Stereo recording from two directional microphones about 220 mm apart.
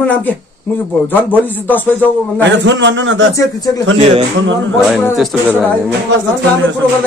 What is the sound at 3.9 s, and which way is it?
Speech, 30° right (ahead or behind).